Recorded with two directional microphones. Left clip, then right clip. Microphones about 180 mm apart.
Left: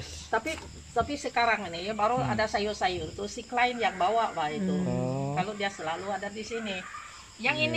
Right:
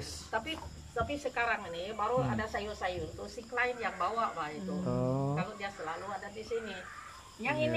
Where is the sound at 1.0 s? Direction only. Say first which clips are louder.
Left 6 dB; 40° left (ahead or behind).